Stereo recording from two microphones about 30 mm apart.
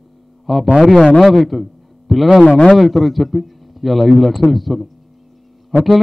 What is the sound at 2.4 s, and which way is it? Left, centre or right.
Speech, left.